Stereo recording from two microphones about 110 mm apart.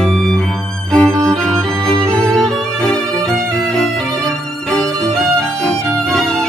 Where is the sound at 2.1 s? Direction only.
5° left (ahead or behind).